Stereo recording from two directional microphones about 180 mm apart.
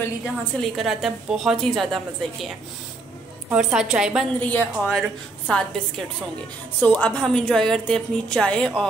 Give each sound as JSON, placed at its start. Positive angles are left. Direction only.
{"t": 0.0, "sound": "a woman's voice", "side_deg": 5}
{"t": 3.4, "sound": "a woman's voice", "side_deg": -5}
{"t": 4.4, "sound": "a woman's voice", "side_deg": 10}
{"t": 6.8, "sound": "a woman's voice", "side_deg": 10}